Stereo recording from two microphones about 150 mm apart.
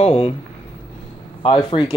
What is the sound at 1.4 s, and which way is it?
Speech, 30° left (ahead or behind).